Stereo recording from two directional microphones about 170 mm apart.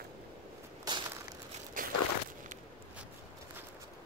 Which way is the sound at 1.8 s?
55° right (ahead or behind).